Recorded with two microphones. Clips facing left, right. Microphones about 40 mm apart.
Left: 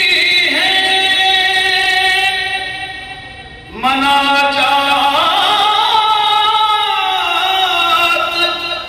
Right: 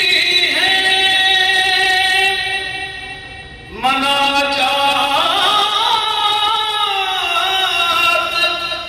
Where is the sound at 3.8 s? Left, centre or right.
Left.